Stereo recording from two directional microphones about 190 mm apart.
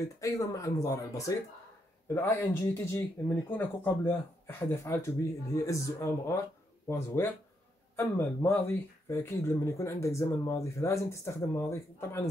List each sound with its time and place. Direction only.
0.2 s speech: 15° left (ahead or behind)